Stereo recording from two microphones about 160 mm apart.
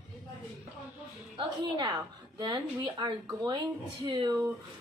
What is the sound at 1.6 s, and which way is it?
A woman's voice, 25° right (ahead or behind).